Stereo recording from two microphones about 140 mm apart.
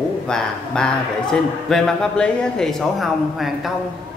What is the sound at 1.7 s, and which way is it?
A man's voice, 5° left (ahead or behind).